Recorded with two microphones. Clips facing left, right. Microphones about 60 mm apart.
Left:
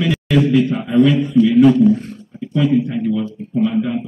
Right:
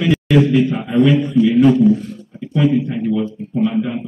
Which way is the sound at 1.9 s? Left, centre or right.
Left.